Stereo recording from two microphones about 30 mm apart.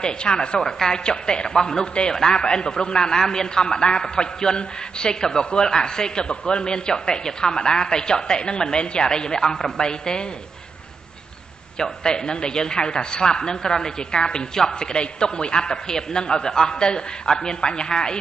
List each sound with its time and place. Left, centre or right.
0.0 s a woman's voice: left
0.6 s a woman's voice: centre
11.8 s a woman's voice: left